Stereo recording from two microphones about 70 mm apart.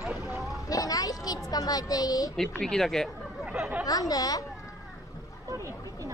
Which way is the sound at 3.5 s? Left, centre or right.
Centre.